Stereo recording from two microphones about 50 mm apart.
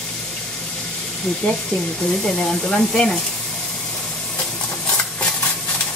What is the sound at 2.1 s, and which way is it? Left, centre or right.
Speech, centre.